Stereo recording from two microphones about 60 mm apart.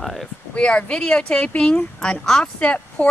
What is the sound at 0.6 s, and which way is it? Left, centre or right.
Speech, centre.